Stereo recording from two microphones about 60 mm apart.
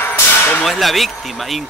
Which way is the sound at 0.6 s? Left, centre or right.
Centre.